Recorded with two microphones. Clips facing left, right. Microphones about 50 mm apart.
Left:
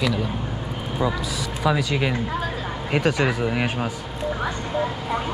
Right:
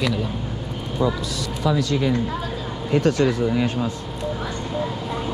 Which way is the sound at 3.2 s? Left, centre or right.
Left.